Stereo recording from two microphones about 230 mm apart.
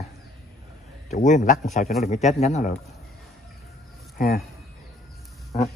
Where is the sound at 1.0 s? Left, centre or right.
Left.